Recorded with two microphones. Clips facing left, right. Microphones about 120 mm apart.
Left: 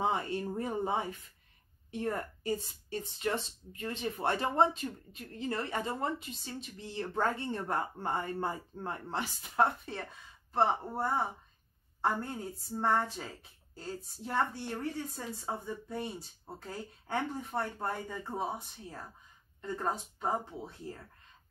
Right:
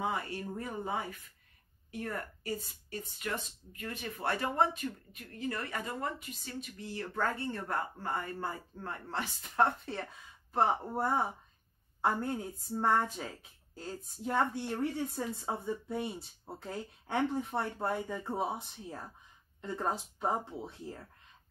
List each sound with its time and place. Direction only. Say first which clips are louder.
0.0 s a woman's voice: left 3 dB; 25° left (ahead or behind); by 19.0 s centre (ahead or behind)
20.2 s speech: right 1 dB; centre (ahead or behind)